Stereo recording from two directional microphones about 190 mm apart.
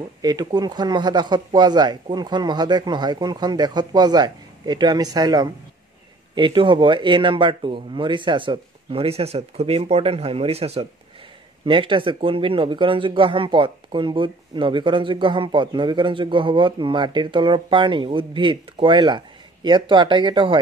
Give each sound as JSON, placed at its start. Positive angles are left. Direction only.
{"t": 0.2, "sound": "speech", "side_deg": -20}